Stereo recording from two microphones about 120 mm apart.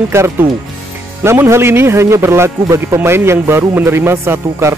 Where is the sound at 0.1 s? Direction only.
25° right (ahead or behind).